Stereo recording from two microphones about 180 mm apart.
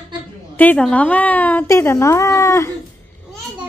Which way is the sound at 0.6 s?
10° left (ahead or behind).